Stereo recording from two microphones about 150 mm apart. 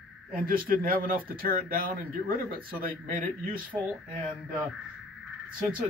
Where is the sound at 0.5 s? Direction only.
70° right (ahead or behind).